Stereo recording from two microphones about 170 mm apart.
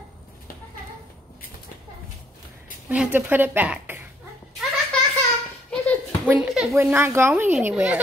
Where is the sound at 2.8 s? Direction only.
10° right (ahead or behind).